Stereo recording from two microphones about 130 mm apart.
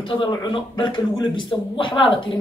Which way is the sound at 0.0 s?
40° left (ahead or behind).